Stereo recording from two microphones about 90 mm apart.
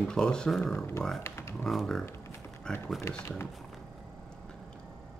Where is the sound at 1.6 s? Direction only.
Centre (ahead or behind).